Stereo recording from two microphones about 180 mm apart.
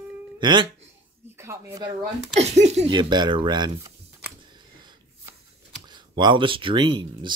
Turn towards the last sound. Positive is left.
turn(degrees=-25)  # may be behind; listen again after turning